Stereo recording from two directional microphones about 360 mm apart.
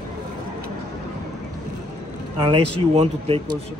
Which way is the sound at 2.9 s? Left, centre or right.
Centre.